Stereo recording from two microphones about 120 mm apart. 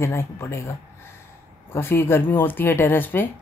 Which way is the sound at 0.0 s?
20° left (ahead or behind).